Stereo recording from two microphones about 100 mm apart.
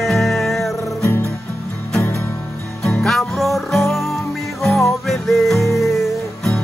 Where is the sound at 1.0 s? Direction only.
25° left (ahead or behind).